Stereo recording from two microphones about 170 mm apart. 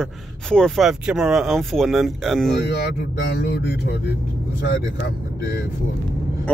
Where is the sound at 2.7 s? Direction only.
75° left (ahead or behind).